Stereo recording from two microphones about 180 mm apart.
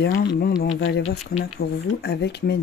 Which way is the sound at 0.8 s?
90° left.